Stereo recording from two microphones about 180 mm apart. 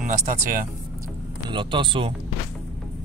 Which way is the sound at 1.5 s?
30° right (ahead or behind).